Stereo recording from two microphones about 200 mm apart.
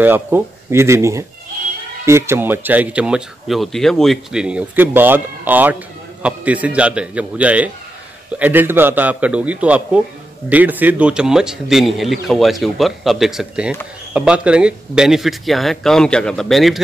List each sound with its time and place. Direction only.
0.0 s speech: 10° right (ahead or behind)